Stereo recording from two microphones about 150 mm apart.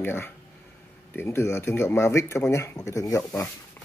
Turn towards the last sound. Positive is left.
turn(degrees=20)  # may be behind; listen again after turning